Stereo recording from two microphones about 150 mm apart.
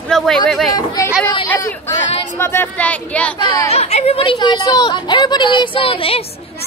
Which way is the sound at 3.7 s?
45° left (ahead or behind).